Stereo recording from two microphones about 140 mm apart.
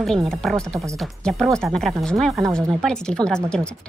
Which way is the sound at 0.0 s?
5° left (ahead or behind).